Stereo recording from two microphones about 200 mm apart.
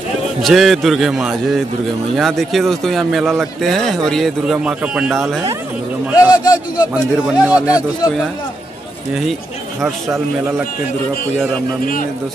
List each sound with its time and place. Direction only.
0.4 s speech: centre (ahead or behind)
6.1 s speech: 20° left (ahead or behind)
7.2 s a man's voice: 5° right (ahead or behind)
9.8 s speech: centre (ahead or behind)
11.8 s a man's voice: 45° left (ahead or behind)